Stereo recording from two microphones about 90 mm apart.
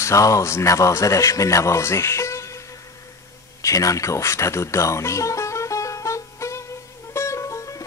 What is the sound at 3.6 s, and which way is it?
Music, 40° left (ahead or behind).